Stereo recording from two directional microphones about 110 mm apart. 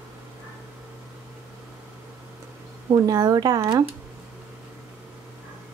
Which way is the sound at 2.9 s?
35° right (ahead or behind).